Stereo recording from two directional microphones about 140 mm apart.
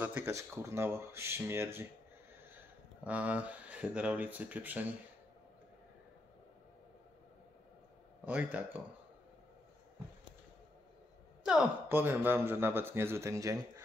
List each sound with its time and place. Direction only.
0.0 s speech: 15° right (ahead or behind)
8.3 s speech: 10° right (ahead or behind)
11.4 s speech: 10° right (ahead or behind)